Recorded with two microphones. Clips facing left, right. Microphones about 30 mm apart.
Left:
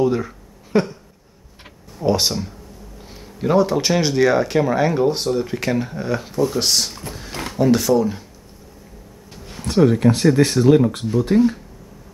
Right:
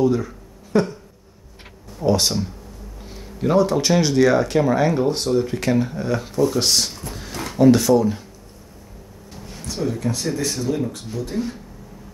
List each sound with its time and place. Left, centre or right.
0.0 s speech: centre
0.7 s a sound: left
2.0 s speech: centre
9.7 s speech: left